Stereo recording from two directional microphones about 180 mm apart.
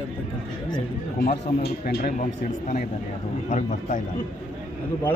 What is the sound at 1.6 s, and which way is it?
Speech, 55° left (ahead or behind).